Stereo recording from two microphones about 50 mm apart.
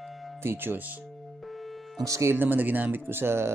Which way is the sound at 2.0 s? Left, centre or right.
Right.